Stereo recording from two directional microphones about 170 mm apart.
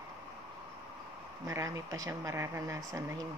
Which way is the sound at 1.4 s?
20° right (ahead or behind).